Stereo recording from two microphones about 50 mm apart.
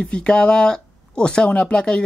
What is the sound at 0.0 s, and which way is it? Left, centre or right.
Speech, centre.